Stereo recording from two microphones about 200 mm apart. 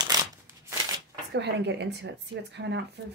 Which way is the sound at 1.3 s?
60° right (ahead or behind).